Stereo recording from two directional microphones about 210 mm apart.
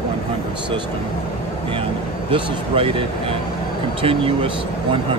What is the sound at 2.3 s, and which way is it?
Speech, 25° right (ahead or behind).